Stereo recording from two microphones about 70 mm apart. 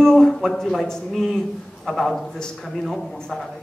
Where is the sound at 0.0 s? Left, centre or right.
Centre.